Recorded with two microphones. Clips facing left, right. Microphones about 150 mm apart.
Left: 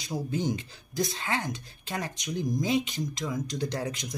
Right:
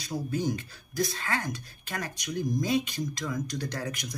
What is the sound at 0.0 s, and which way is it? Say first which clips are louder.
Speech: even; 20° left (ahead or behind).